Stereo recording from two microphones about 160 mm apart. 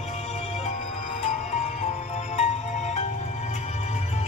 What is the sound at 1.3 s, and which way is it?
Music, 45° left (ahead or behind).